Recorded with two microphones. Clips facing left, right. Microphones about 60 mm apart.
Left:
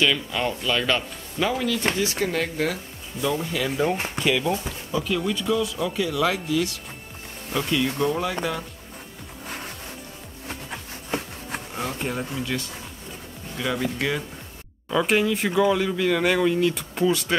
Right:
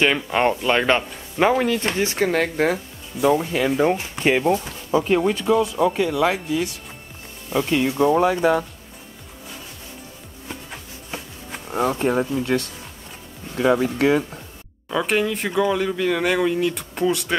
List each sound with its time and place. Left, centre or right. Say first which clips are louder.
0.0 s speech: right 5 dB; right
3.8 s speech: right 4 dB; right
7.4 s speech: right 4 dB; right
11.1 s a sound: left 5 dB; left
11.7 s speech: right 10 dB; right
13.6 s speech: right 8 dB; right
14.9 s speech: even; centre